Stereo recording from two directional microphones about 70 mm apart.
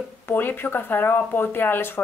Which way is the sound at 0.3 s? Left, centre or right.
Left.